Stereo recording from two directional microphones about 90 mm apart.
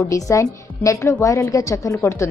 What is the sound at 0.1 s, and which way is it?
A woman's voice, 35° left (ahead or behind).